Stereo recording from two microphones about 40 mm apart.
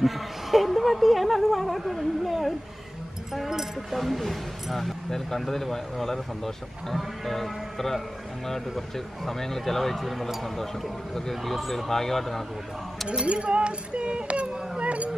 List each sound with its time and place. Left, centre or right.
0.0 s speech: centre
13.2 s music: right
14.8 s a sound: right